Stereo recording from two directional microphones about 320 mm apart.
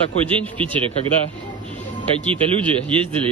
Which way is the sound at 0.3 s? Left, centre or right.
Centre.